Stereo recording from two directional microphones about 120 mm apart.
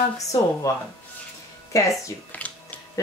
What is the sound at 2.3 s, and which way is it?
Music, 15° left (ahead or behind).